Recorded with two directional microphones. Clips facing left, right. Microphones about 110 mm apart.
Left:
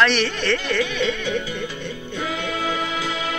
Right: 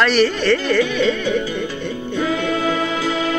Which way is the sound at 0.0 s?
5° right (ahead or behind).